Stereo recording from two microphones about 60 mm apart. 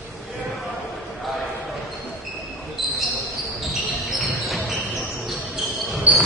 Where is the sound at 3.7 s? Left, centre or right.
Centre.